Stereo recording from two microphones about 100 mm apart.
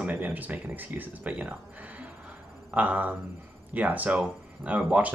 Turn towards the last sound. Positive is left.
turn(degrees=-15)  # may be behind; listen again after turning